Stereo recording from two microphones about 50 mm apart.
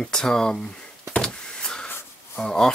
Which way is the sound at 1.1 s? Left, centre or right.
Centre.